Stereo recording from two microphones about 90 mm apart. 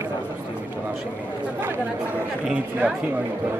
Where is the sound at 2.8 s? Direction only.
15° right (ahead or behind).